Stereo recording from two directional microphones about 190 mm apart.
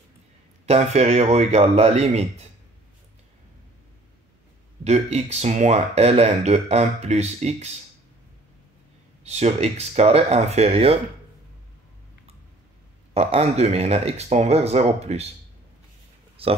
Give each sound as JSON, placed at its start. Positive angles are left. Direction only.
{"t": 0.7, "sound": "speech", "side_deg": -35}
{"t": 4.8, "sound": "speech", "side_deg": -35}
{"t": 9.2, "sound": "speech", "side_deg": -35}
{"t": 13.1, "sound": "speech", "side_deg": -35}
{"t": 16.4, "sound": "speech", "side_deg": -30}